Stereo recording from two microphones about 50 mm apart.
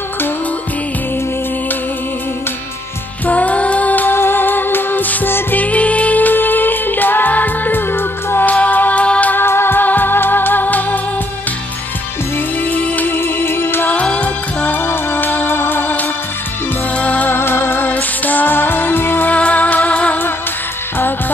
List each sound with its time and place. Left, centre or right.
3.3 s music: left
7.9 s music: left
8.5 s music: left
9.0 s music: left
9.3 s music: left
12.6 s music: left
13.1 s music: left
14.0 s music: left
14.9 s music: left
17.3 s music: left
17.8 s music: left
19.3 s music: left